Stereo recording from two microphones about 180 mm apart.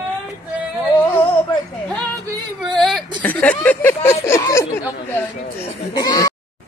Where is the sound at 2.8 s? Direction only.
Centre (ahead or behind); by 6.3 s 20° left (ahead or behind).